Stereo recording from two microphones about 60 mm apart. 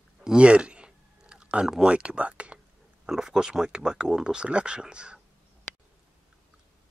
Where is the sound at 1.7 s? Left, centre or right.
Centre.